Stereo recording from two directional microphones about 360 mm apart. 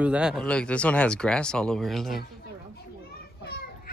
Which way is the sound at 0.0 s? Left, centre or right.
Centre.